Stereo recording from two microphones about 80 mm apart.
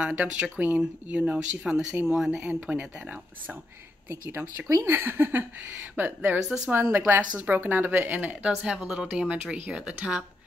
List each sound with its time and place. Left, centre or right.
0.0 s speech: centre
4.1 s speech: right
8.6 s speech: centre